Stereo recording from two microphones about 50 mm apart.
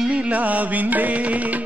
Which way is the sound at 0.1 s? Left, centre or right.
Right.